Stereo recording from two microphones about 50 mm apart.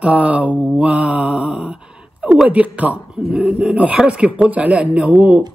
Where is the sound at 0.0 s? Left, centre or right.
Right.